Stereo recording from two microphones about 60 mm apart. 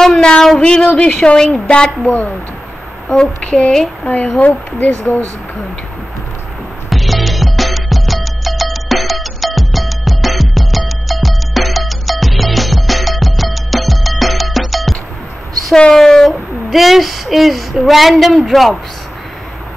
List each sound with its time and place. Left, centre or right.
0.0 s a sound: centre
0.6 s a woman's voice: centre
2.0 s speech: left
3.1 s a woman's voice: centre
4.0 s speech: left
6.9 s music: centre
15.7 s a woman's voice: centre